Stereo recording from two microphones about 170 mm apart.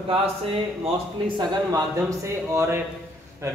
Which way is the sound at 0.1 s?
35° right (ahead or behind).